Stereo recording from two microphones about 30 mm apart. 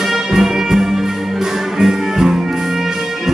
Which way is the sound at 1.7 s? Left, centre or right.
Centre.